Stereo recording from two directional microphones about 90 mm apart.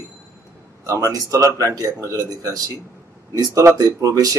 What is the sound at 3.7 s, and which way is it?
Speech, 40° right (ahead or behind).